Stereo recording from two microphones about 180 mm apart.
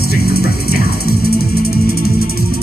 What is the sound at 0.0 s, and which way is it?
Music, 60° left (ahead or behind).